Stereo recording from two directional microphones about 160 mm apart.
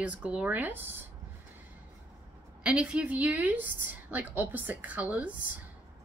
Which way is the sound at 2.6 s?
5° right (ahead or behind).